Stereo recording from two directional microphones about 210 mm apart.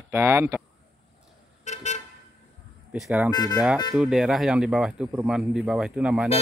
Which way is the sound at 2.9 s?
5° right (ahead or behind).